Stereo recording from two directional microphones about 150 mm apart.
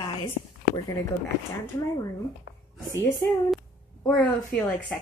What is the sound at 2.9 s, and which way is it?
Speech, 15° left (ahead or behind).